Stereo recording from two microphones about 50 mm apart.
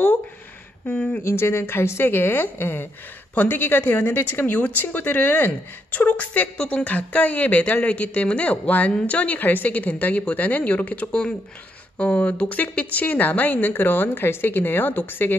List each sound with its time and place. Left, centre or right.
0.8 s speech: left
1.2 s a woman's voice: left
11.1 s speech: centre
12.0 s a woman's voice: left